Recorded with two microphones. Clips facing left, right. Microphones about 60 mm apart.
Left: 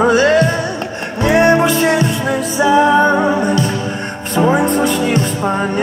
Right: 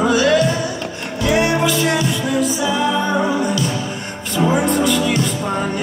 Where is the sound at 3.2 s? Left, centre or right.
Left.